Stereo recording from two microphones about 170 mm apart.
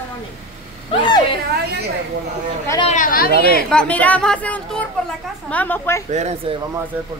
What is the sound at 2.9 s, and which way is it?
Speech, 55° left (ahead or behind).